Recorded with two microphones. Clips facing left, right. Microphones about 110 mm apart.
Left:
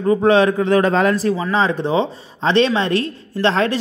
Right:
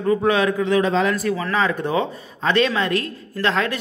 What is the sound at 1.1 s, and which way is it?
A woman's voice, 30° left (ahead or behind).